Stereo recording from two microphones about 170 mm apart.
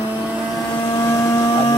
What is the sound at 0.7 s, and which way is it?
Printer, 15° left (ahead or behind).